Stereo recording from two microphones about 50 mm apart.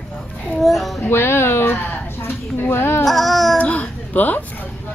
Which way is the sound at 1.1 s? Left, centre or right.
Left.